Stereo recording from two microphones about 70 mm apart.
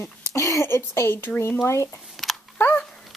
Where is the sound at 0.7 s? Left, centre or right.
Left.